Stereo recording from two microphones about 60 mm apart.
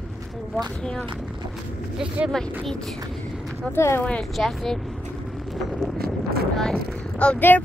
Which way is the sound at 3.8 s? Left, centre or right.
Left.